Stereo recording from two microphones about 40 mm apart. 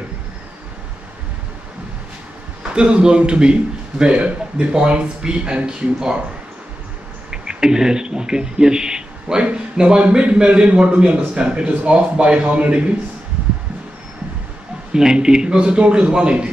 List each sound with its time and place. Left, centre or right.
2.6 s speech: right
7.2 s speech: centre
14.9 s speech: centre